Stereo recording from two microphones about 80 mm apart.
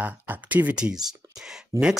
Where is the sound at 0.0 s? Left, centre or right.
Right.